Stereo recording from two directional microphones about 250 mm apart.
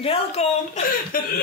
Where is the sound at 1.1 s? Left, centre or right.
Left.